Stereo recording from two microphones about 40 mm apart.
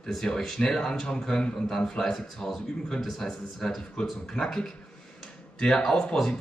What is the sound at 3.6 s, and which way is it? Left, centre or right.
Speech, centre.